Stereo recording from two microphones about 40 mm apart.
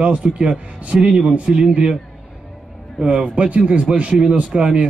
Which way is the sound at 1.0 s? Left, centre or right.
Right.